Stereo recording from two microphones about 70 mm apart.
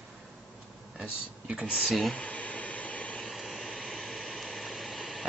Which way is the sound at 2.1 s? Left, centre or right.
Centre.